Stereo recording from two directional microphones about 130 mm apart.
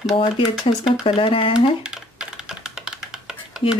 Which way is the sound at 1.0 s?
45° left (ahead or behind).